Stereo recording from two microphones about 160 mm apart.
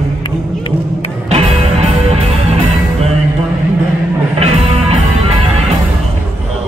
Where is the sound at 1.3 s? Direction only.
40° right (ahead or behind).